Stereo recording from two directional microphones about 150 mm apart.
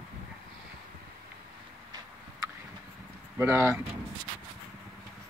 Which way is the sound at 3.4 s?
15° right (ahead or behind).